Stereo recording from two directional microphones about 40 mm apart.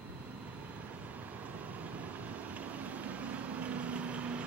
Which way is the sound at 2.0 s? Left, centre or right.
Right.